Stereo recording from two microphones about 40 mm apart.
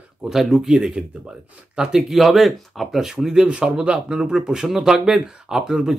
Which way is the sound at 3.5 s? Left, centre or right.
Right.